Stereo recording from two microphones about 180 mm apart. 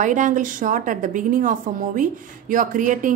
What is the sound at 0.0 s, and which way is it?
A woman's voice, 45° right (ahead or behind).